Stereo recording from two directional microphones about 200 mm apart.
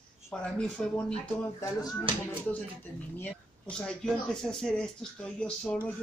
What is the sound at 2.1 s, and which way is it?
Speech, 25° right (ahead or behind).